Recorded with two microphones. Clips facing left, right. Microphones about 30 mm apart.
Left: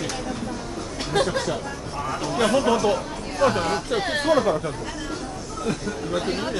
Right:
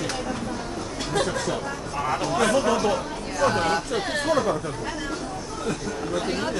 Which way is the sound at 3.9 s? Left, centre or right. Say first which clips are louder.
Left 3 dB; left.